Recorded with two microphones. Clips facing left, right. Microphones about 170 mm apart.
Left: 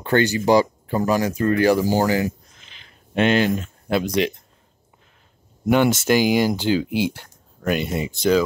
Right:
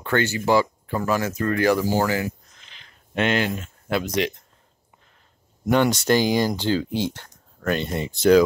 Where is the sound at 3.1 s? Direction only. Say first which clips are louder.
Left 4 dB; 25° left (ahead or behind).